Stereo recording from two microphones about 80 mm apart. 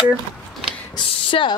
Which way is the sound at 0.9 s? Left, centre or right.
Left.